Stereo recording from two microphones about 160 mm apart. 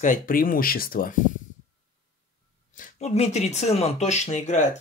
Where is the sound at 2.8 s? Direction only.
45° left (ahead or behind).